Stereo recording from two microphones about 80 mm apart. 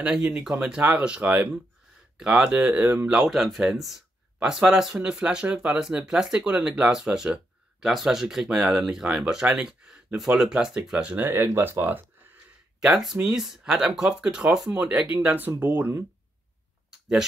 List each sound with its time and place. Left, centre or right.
0.0 s speech: centre; by 3.1 s right
3.3 s speech: centre
11.1 s speech: right
12.8 s speech: centre